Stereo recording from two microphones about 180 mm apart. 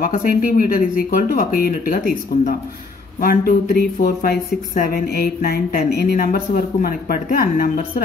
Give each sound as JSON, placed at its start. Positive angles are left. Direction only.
{"t": 0.0, "sound": "speech", "side_deg": 50}
{"t": 3.2, "sound": "speech", "side_deg": 55}